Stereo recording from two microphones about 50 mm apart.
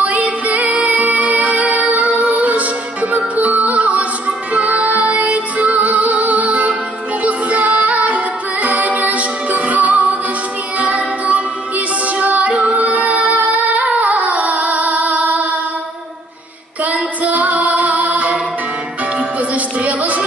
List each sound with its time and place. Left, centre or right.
0.0 s music: right
12.2 s female singing: right
16.8 s female singing: right
19.1 s music: right